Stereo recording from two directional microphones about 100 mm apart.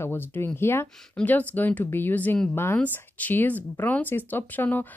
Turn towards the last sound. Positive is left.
turn(degrees=15)  # may be behind; listen again after turning